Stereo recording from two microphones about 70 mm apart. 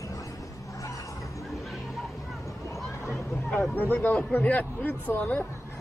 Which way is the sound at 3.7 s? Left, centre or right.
Left.